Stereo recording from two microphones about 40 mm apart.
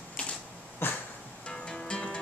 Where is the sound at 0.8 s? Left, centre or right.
Left.